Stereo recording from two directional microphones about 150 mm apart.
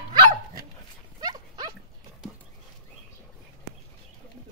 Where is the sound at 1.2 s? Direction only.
25° right (ahead or behind).